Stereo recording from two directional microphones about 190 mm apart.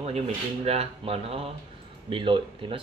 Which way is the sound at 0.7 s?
30° right (ahead or behind).